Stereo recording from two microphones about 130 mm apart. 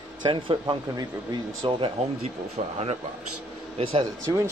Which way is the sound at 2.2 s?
55° right (ahead or behind).